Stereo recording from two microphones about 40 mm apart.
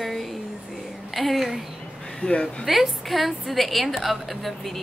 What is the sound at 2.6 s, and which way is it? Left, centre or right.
A woman's voice, centre.